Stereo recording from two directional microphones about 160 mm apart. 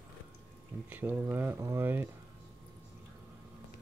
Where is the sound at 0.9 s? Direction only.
10° right (ahead or behind).